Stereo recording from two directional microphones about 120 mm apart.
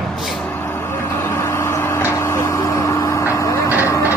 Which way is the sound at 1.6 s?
20° left (ahead or behind).